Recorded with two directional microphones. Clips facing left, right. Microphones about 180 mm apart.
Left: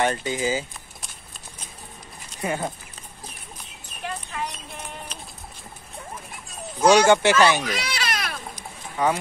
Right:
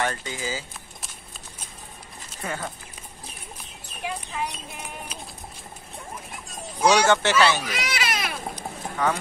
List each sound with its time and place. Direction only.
0.0 s speech: 20° left (ahead or behind)
2.4 s speech: 20° left (ahead or behind)
4.0 s clip-clop: 10° right (ahead or behind)
7.1 s speech: 10° left (ahead or behind)
7.6 s baby cry: 5° right (ahead or behind)
8.5 s a sound: 10° left (ahead or behind)